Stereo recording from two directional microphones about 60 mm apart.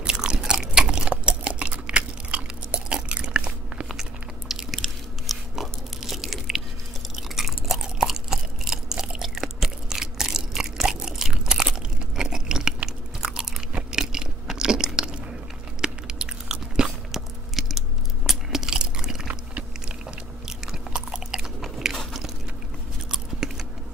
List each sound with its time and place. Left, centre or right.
0.0 s chewing: centre
3.9 s biting: centre
7.2 s chewing: centre
15.8 s biting: centre
20.4 s chewing: centre
21.4 s biting: centre
23.4 s keys jangling: centre